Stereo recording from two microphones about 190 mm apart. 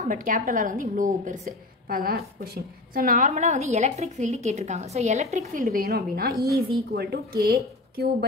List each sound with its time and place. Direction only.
0.0 s a woman's voice: 45° right (ahead or behind)
5.5 s a woman's voice: 45° right (ahead or behind)